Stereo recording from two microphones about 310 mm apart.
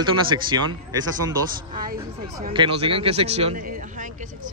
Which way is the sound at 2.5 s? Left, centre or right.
Centre.